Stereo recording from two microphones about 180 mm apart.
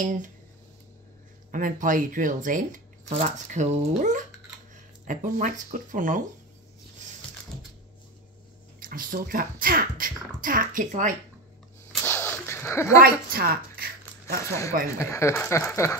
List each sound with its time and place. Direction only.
0.0 s speech: 45° right (ahead or behind)
1.5 s speech: 50° right (ahead or behind)
7.0 s a sound: 40° right (ahead or behind)
8.7 s speech: 50° right (ahead or behind)
12.0 s a sound: 10° left (ahead or behind)
13.0 s zipper: 55° right (ahead or behind)
15.0 s speech: 15° left (ahead or behind)